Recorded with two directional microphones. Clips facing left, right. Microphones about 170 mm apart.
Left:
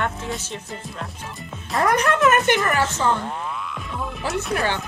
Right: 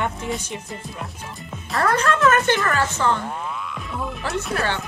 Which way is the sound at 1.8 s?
15° left (ahead or behind).